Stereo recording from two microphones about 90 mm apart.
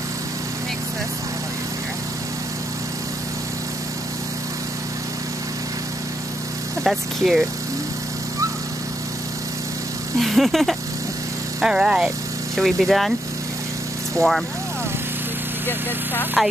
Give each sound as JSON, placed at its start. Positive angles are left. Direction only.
{"t": 6.8, "sound": "speech", "side_deg": 0}
{"t": 10.2, "sound": "speech", "side_deg": 0}
{"t": 14.1, "sound": "speech", "side_deg": 0}
{"t": 16.4, "sound": "speech", "side_deg": 0}